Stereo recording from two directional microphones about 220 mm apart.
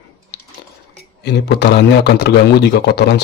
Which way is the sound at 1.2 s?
50° left (ahead or behind).